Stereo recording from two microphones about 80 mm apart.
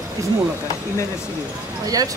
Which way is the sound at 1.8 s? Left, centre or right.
Right.